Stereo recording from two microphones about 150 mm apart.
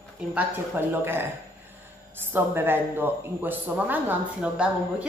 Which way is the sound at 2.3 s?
15° right (ahead or behind).